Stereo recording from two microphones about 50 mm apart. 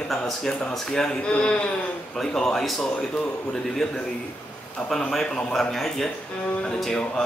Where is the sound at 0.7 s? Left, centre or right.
Centre.